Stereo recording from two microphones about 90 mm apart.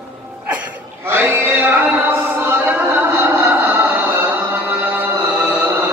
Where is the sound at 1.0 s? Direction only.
25° right (ahead or behind).